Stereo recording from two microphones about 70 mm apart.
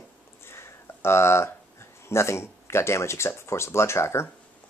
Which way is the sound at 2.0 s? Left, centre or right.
Left.